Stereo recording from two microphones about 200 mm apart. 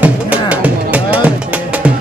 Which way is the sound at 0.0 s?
5° right (ahead or behind).